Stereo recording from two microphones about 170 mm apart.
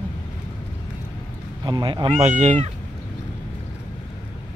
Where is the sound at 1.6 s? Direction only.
25° right (ahead or behind); by 2.6 s 45° right (ahead or behind).